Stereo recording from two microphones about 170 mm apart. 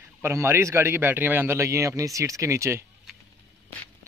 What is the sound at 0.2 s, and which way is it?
A man's voice, 15° right (ahead or behind).